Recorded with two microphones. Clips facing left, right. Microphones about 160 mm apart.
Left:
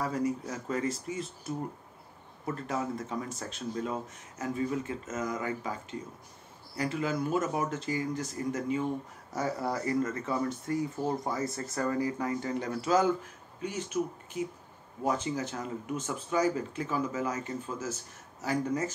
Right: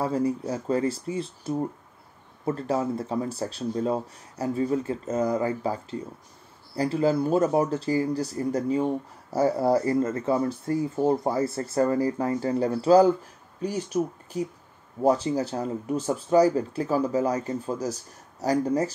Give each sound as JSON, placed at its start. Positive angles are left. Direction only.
{"t": 0.0, "sound": "speech", "side_deg": -30}